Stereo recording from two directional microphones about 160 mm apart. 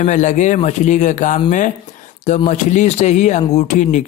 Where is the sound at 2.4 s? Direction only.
50° left (ahead or behind).